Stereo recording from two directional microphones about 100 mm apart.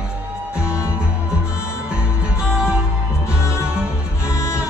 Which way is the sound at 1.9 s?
10° right (ahead or behind).